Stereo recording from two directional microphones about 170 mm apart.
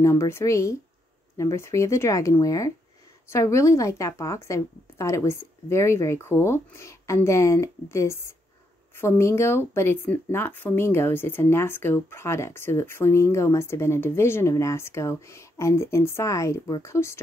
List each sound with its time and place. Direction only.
0.0 s speech: 15° left (ahead or behind)